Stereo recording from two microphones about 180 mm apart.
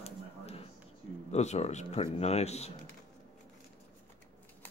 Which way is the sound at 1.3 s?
40° left (ahead or behind).